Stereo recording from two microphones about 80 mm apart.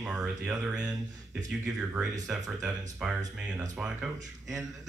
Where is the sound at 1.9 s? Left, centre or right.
Centre.